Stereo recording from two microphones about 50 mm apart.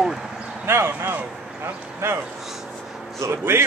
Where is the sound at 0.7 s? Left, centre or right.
Right.